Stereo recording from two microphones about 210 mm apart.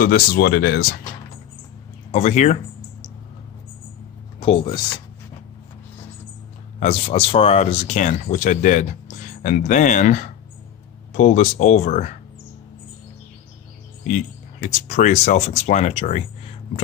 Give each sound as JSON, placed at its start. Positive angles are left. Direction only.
{"t": 0.0, "sound": "speech", "side_deg": 45}
{"t": 2.1, "sound": "a sound", "side_deg": 35}
{"t": 4.4, "sound": "speech", "side_deg": 25}
{"t": 6.8, "sound": "speech", "side_deg": 25}
{"t": 14.0, "sound": "speech", "side_deg": 35}